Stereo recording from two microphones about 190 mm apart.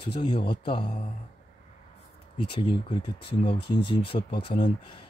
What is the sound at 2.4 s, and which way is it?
Speech, 25° left (ahead or behind).